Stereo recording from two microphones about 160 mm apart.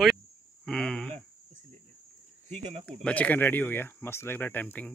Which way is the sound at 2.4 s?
45° right (ahead or behind).